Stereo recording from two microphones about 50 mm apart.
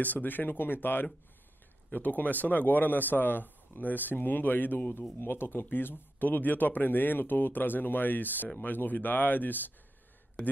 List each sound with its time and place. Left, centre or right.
0.0 s speech: left
1.9 s speech: left